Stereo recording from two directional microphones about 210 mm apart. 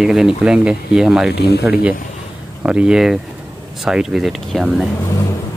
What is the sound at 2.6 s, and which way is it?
Speech, 5° right (ahead or behind).